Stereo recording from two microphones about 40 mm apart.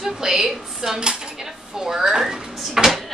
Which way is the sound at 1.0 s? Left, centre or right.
Right.